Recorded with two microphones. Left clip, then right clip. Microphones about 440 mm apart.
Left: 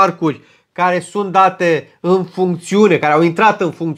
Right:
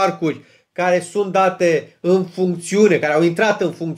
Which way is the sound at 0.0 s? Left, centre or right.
Left.